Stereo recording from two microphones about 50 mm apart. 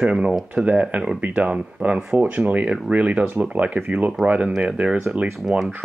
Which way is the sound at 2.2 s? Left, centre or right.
Right.